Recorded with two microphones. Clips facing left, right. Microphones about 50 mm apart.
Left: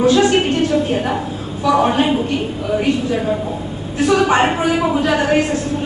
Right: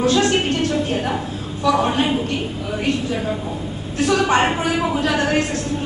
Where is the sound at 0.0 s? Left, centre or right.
Centre.